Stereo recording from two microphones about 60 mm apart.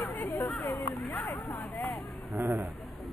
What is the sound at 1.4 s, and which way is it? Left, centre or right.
Speech, left.